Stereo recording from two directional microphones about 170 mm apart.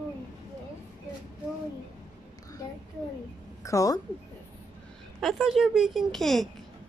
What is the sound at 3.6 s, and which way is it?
Speech, 20° left (ahead or behind).